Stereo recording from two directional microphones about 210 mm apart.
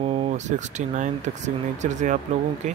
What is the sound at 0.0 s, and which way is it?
Speech, 30° right (ahead or behind).